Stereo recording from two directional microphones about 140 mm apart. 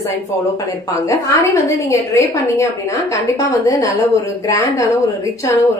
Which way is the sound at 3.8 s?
20° left (ahead or behind).